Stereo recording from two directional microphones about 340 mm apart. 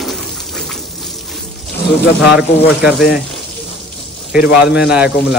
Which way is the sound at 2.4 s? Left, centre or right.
Centre.